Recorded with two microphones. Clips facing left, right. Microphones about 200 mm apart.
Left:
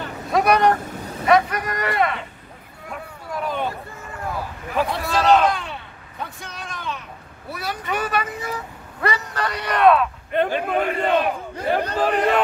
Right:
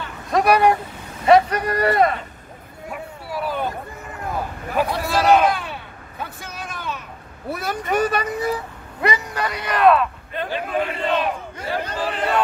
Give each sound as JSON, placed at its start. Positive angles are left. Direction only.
{"t": 0.3, "sound": "speech", "side_deg": 0}
{"t": 1.2, "sound": "speech", "side_deg": -30}
{"t": 2.9, "sound": "speech", "side_deg": -5}
{"t": 4.7, "sound": "speech", "side_deg": 0}
{"t": 5.0, "sound": "a sound", "side_deg": -10}
{"t": 7.5, "sound": "speech", "side_deg": -45}
{"t": 9.0, "sound": "speech", "side_deg": -15}
{"t": 10.3, "sound": "a man's voice", "side_deg": 55}